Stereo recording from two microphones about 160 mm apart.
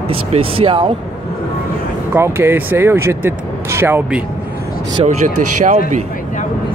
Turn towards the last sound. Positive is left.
turn(degrees=-50)  # may be behind; listen again after turning